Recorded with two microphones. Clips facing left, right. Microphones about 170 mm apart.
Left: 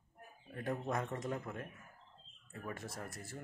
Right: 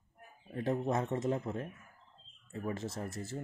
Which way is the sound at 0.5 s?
25° right (ahead or behind).